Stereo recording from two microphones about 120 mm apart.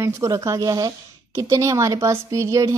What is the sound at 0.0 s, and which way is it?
Speech, 25° right (ahead or behind).